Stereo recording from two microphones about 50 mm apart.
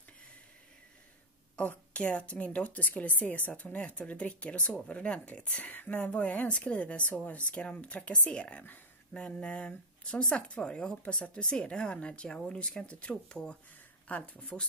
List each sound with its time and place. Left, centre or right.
1.6 s speech: left
14.0 s speech: left